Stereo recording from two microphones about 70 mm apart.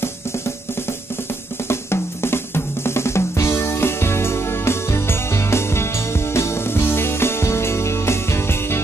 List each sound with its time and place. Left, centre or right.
1.7 s drum: left